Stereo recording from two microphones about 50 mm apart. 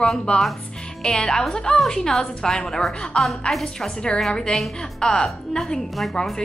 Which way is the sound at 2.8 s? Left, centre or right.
Centre.